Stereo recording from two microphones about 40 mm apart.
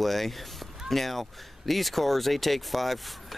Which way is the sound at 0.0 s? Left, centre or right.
Centre.